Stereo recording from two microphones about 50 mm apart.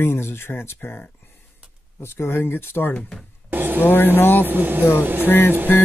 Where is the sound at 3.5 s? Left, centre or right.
Right.